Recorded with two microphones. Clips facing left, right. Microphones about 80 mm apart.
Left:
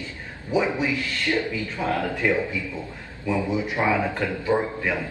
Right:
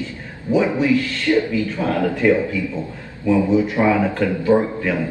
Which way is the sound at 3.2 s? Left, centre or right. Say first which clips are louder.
Right 8 dB; centre.